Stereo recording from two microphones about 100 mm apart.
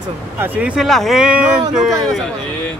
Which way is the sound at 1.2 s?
10° right (ahead or behind).